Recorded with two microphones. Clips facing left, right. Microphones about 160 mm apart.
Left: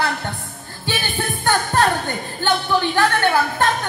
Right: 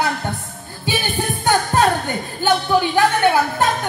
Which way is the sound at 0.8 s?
15° right (ahead or behind).